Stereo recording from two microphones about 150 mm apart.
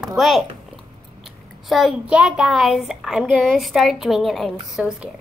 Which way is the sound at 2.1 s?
5° right (ahead or behind).